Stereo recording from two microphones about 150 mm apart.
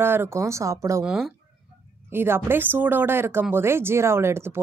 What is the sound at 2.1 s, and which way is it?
Speech, 15° right (ahead or behind).